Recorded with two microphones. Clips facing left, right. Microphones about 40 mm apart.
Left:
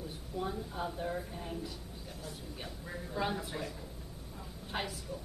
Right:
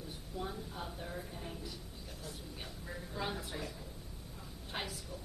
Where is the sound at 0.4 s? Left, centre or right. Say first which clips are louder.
Left 5 dB; centre.